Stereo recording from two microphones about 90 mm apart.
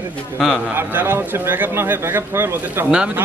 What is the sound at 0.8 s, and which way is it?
Speech, 25° right (ahead or behind).